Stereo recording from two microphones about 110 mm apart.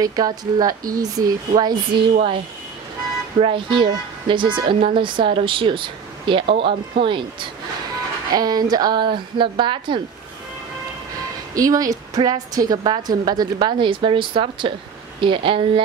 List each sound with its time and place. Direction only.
0.0 s speech: 35° right (ahead or behind)
1.5 s speech: 45° right (ahead or behind)
3.3 s speech: 50° right (ahead or behind)
8.4 s speech: 35° right (ahead or behind)
11.5 s speech: 30° right (ahead or behind); by 15.8 s 50° right (ahead or behind)